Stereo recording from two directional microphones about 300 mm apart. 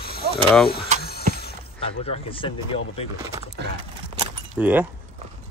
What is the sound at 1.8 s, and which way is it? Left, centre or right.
Speech, centre.